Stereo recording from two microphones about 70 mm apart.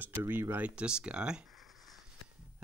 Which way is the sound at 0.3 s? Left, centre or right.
Right.